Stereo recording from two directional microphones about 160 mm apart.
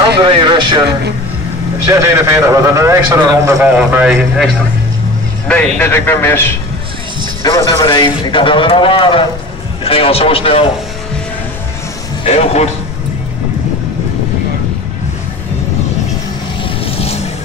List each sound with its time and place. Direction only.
0.2 s a man's voice: 30° right (ahead or behind)
1.9 s a man's voice: 20° right (ahead or behind)
3.7 s a man's voice: 5° right (ahead or behind)
5.8 s a man's voice: 15° left (ahead or behind)
7.4 s a man's voice: 25° left (ahead or behind)
12.3 s speech: 40° left (ahead or behind)
16.8 s music: 40° left (ahead or behind)